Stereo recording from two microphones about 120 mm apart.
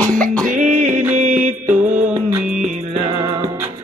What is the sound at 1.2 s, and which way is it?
Music, 90° right.